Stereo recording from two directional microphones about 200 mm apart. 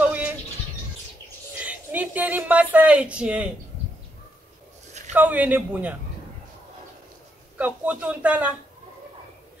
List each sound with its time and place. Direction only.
0.0 s bird: 10° right (ahead or behind)
1.6 s a sound: 5° right (ahead or behind)
5.1 s speech: 10° right (ahead or behind)
7.5 s speech: 5° right (ahead or behind)